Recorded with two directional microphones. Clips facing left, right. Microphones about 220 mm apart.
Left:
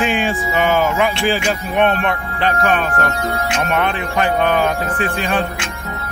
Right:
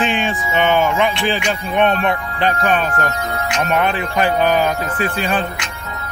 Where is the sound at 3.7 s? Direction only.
35° right (ahead or behind).